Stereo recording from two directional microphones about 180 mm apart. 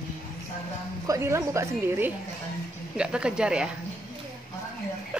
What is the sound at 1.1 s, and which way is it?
A woman's voice, 15° right (ahead or behind).